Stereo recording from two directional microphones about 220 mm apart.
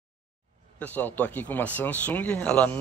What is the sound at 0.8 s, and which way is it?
A man's voice, 10° left (ahead or behind).